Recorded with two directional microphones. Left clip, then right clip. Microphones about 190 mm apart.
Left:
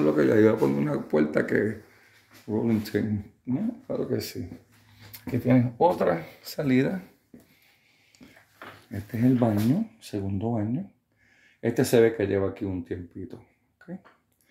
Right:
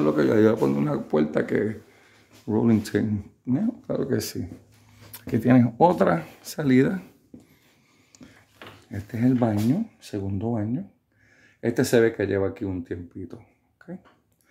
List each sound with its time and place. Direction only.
0.0 s speech: 5° right (ahead or behind)
2.4 s speech: 35° right (ahead or behind)
5.4 s speech: 35° right (ahead or behind); by 7.0 s 20° right (ahead or behind)
8.9 s speech: centre (ahead or behind)